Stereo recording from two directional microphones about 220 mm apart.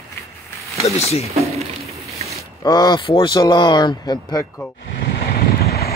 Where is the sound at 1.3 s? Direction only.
30° right (ahead or behind).